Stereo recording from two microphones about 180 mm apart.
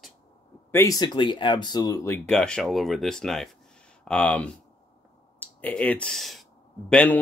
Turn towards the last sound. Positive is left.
turn(degrees=5)  # may be behind; listen again after turning